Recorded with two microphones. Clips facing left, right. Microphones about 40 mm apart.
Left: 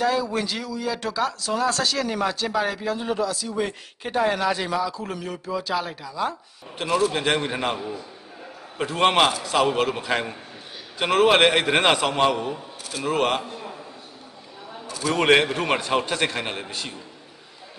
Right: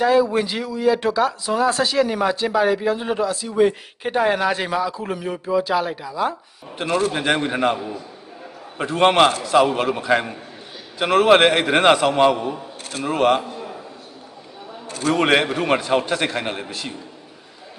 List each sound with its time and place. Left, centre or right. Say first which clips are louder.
0.0 s speech: right 6 dB; centre
3.5 s a man's voice: right 9 dB; centre
14.9 s a sound: right 4 dB; right
15.1 s a man's voice: even; centre